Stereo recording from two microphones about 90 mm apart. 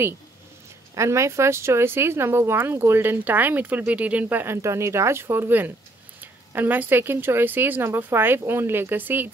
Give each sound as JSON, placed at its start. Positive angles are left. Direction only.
{"t": 0.9, "sound": "speech", "side_deg": -35}